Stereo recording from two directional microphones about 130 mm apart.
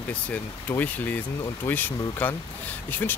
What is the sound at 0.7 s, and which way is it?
Speech, 10° left (ahead or behind).